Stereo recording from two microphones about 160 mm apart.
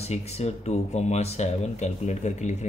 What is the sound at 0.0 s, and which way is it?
Speech, 40° left (ahead or behind).